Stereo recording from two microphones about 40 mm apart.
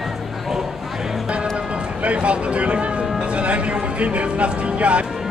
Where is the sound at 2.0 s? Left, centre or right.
Right.